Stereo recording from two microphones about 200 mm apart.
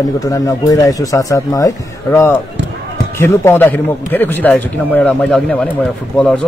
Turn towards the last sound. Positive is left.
turn(degrees=5)  # may be behind; listen again after turning